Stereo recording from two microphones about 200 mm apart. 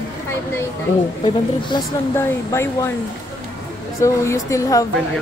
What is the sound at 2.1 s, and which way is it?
Speech, 15° left (ahead or behind).